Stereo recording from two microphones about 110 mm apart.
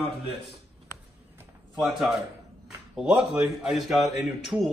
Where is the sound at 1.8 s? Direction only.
Centre (ahead or behind).